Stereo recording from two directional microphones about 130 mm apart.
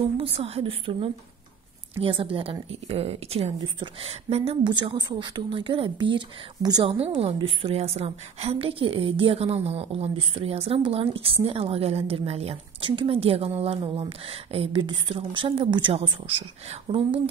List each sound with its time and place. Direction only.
0.0 s a woman's voice: 45° right (ahead or behind)
4.6 s a woman's voice: 35° right (ahead or behind)